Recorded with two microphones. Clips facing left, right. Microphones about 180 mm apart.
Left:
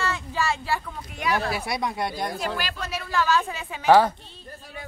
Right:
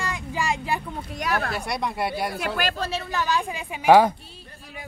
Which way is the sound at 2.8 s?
25° right (ahead or behind).